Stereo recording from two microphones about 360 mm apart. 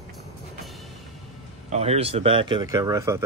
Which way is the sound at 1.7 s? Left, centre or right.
Centre.